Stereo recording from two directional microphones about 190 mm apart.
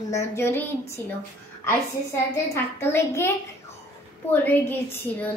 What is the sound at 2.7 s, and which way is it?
Speech, 15° left (ahead or behind).